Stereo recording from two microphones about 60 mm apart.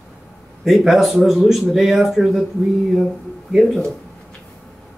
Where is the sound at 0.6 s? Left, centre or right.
Centre.